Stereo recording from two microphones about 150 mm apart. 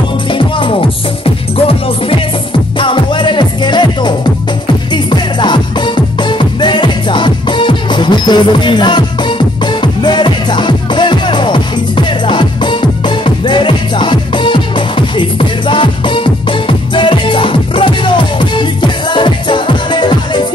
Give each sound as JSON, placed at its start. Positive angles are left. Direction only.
{"t": 0.3, "sound": "music", "side_deg": 35}
{"t": 10.0, "sound": "music", "side_deg": 30}